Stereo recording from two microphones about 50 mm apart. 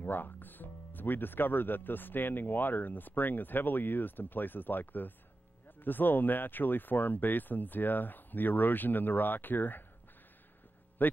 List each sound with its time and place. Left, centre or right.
0.0 s speech: left
11.0 s speech: left